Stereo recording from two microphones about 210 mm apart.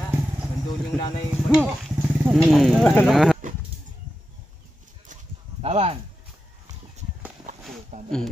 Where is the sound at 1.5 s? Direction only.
5° right (ahead or behind).